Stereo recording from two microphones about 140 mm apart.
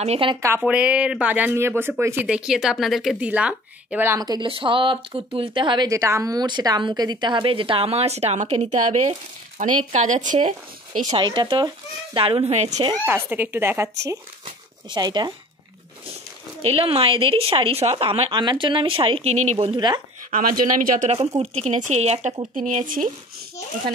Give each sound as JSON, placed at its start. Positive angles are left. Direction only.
{"t": 0.0, "sound": "speech", "side_deg": -45}
{"t": 0.4, "sound": "speech", "side_deg": -20}
{"t": 2.2, "sound": "speech", "side_deg": -5}
{"t": 4.2, "sound": "speech", "side_deg": -30}
{"t": 4.5, "sound": "speech", "side_deg": -40}
{"t": 5.9, "sound": "speech", "side_deg": -20}
{"t": 11.1, "sound": "speech", "side_deg": -35}
{"t": 13.0, "sound": "speech", "side_deg": -15}
{"t": 14.4, "sound": "a sound", "side_deg": -30}
{"t": 16.6, "sound": "speech", "side_deg": -40}
{"t": 20.2, "sound": "speech", "side_deg": -75}
{"t": 21.4, "sound": "speech", "side_deg": -50}
{"t": 22.7, "sound": "speech", "side_deg": -65}